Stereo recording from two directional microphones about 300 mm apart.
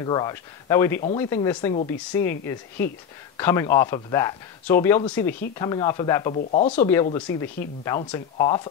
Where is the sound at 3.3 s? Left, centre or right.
Centre.